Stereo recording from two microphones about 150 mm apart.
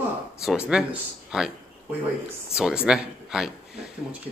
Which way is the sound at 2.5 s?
5° right (ahead or behind).